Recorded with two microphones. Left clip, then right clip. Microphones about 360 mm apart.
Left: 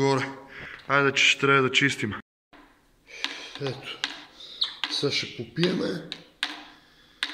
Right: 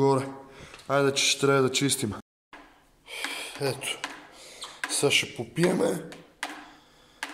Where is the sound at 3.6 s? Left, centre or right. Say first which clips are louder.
Right 3 dB; centre.